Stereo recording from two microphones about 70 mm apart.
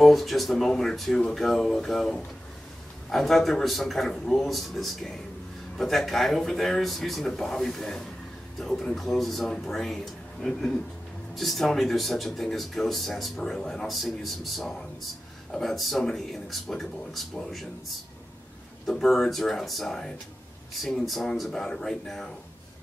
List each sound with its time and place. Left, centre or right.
0.0 s speech: centre
18.9 s speech: centre